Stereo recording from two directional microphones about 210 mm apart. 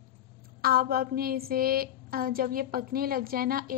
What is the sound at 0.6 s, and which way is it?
A woman's voice, 45° right (ahead or behind).